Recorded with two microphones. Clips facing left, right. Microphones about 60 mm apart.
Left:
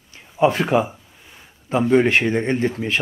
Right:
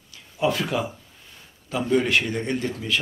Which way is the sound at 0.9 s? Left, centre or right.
Left.